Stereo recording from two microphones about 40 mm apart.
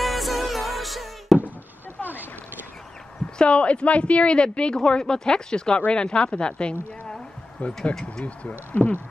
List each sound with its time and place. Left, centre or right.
0.0 s music: centre
3.3 s a woman's voice: left
7.6 s speech: left
8.0 s a woman's voice: left
8.7 s speech: left